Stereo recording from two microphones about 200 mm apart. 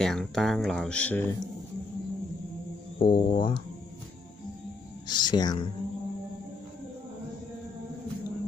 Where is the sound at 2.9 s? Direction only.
25° left (ahead or behind).